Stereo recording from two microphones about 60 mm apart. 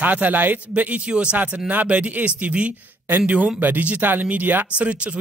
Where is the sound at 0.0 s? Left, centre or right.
Right.